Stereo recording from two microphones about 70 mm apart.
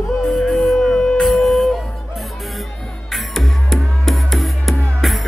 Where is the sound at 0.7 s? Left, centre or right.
Centre.